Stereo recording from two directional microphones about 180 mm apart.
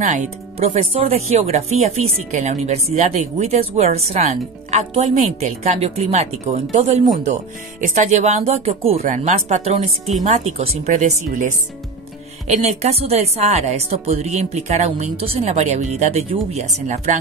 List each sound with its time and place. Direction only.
0.0 s speech: 40° right (ahead or behind)
12.6 s speech: 35° right (ahead or behind)